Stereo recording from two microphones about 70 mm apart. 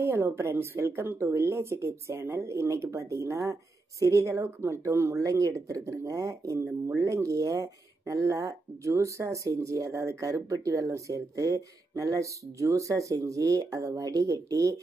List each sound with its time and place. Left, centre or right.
0.0 s speech: right